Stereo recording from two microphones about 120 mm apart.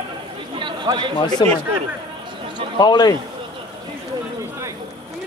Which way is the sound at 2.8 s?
35° left (ahead or behind).